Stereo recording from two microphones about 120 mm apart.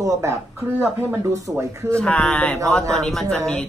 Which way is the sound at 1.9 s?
10° left (ahead or behind).